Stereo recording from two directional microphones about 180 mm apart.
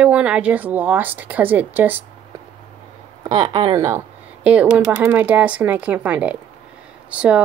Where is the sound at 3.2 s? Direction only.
25° right (ahead or behind).